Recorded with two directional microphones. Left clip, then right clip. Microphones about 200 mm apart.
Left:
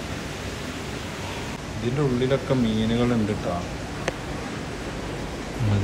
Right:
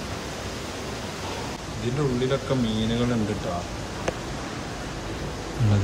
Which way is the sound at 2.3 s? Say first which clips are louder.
Left 2 dB; 10° right (ahead or behind).